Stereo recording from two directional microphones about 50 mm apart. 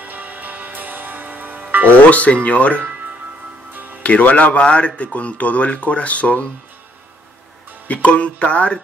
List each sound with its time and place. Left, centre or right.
0.0 s music: right
2.0 s a man's voice: left
4.0 s a man's voice: left
7.9 s a man's voice: left